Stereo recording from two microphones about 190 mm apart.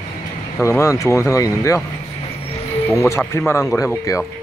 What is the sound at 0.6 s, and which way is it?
Speech, 15° left (ahead or behind).